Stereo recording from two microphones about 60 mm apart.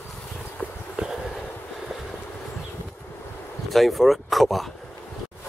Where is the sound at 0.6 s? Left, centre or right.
Left.